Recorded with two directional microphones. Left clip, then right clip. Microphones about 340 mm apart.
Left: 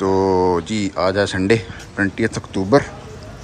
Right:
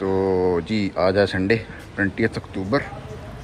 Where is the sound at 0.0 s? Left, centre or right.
Centre.